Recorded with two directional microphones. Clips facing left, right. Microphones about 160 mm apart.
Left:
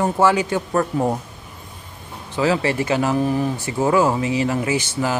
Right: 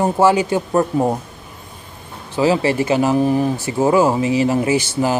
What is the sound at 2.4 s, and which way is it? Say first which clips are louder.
Speech: right 3 dB; 30° right (ahead or behind).